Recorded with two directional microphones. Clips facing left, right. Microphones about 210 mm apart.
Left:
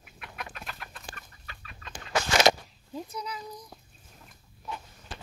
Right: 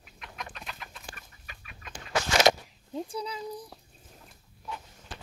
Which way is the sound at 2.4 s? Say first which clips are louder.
Even; 25° right (ahead or behind).